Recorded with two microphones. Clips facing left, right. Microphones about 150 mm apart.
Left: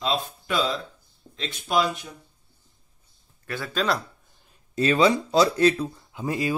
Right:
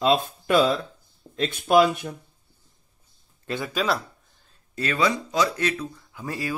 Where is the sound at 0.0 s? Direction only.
55° right (ahead or behind).